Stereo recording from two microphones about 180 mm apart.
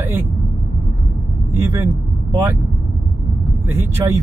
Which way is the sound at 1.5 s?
15° right (ahead or behind).